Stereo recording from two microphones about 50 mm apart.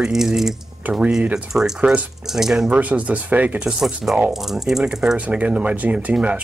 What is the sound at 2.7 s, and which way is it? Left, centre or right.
Speech, right.